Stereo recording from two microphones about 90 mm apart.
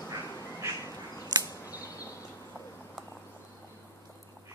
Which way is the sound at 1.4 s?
40° left (ahead or behind).